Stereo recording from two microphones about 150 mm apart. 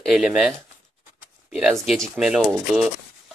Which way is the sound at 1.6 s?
Centre (ahead or behind).